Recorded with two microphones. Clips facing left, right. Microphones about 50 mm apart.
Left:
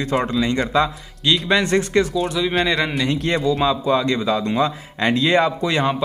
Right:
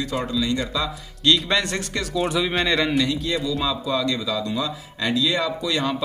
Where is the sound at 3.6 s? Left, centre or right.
Left.